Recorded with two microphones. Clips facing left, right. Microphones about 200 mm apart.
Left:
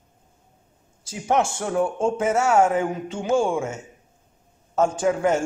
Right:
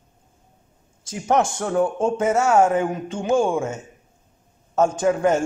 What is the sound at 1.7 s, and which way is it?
Speech, 20° right (ahead or behind).